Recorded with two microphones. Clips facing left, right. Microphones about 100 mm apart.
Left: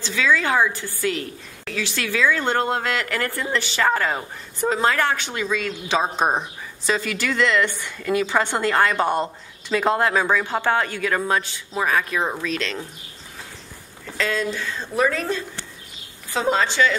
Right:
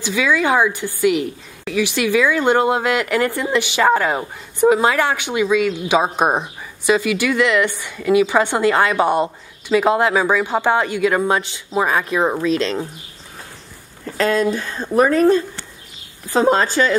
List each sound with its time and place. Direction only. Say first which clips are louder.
0.0 s a woman's voice: right 3 dB; 15° right (ahead or behind); by 12.8 s 30° right (ahead or behind)
14.1 s speech: right 7 dB; 45° right (ahead or behind)